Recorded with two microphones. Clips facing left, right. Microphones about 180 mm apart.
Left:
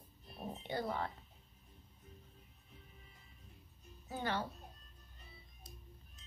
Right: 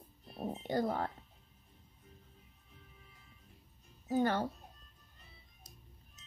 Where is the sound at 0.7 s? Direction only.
45° right (ahead or behind).